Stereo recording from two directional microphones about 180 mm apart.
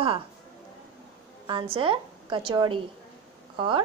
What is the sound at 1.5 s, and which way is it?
A woman's voice, 30° right (ahead or behind).